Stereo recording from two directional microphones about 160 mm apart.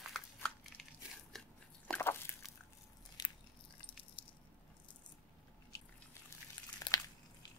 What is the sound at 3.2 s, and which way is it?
Biting, 25° left (ahead or behind).